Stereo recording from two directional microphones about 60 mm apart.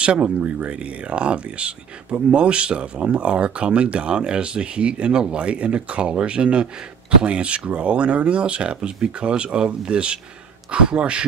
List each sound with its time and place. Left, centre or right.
0.0 s speech: centre